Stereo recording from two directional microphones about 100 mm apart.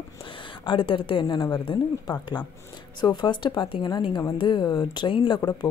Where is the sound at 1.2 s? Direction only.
50° left (ahead or behind).